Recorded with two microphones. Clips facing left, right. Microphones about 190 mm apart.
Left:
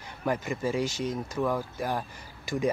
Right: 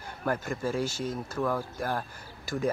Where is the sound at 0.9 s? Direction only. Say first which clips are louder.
Left 2 dB; 5° right (ahead or behind).